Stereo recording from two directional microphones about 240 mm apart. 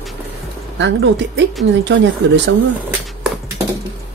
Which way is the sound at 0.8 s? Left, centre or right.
Right.